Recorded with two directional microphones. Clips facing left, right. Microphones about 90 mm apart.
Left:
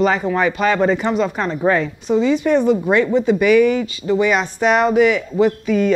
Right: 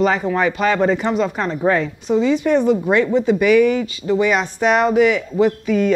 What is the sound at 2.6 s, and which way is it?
Speech, 35° left (ahead or behind).